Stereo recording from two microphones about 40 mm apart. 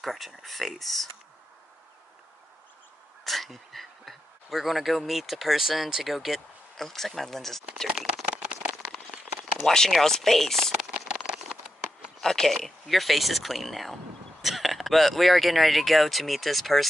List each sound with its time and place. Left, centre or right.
0.0 s speech: centre
3.3 s a man's voice: centre
6.8 s speech: centre
8.4 s a sound: right
9.7 s speech: centre
10.7 s a sound: centre
12.2 s speech: centre